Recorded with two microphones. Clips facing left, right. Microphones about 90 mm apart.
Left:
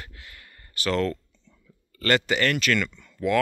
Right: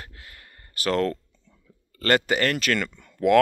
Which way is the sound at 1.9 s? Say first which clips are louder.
Right 1 dB; 40° right (ahead or behind).